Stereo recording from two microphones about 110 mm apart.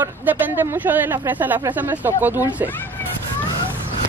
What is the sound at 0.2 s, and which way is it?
Speech, 15° right (ahead or behind).